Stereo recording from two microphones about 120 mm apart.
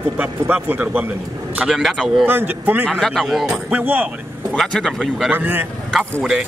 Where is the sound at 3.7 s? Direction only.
15° right (ahead or behind).